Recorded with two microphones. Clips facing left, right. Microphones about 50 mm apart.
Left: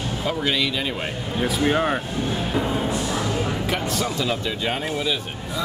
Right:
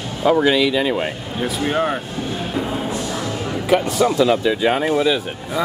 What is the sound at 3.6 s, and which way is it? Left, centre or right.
Speech, centre.